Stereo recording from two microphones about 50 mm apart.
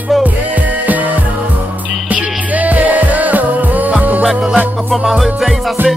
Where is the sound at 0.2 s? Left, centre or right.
Right.